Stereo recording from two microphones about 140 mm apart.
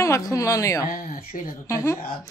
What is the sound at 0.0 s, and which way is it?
A woman's voice, 20° left (ahead or behind).